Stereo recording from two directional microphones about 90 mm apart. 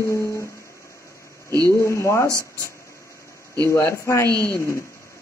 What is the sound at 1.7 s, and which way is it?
Speech, 30° left (ahead or behind).